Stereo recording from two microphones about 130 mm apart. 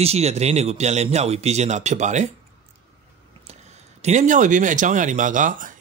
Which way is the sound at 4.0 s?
65° right (ahead or behind).